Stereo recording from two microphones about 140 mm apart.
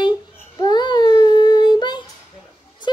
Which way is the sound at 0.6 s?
30° left (ahead or behind).